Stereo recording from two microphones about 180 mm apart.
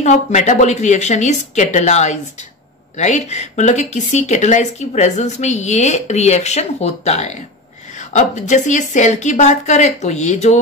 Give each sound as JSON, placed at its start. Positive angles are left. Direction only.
{"t": 0.0, "sound": "speech", "side_deg": 40}